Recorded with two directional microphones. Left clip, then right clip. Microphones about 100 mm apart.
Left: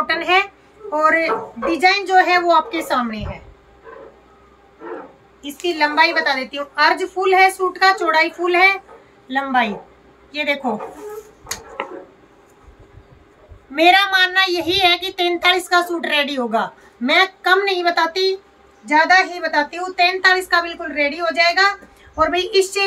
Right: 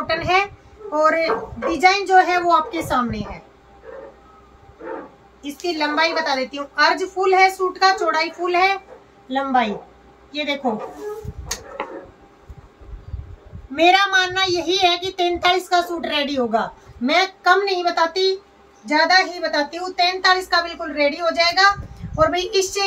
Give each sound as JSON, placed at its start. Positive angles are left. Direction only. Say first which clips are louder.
{"t": 0.0, "sound": "child singing", "louder": "left 2 dB", "side_deg": 10}
{"t": 5.4, "sound": "child singing", "louder": "left 4 dB", "side_deg": 15}
{"t": 13.7, "sound": "child singing", "louder": "left 2 dB", "side_deg": 15}
{"t": 18.9, "sound": "a woman's voice", "louder": "left 2 dB", "side_deg": -5}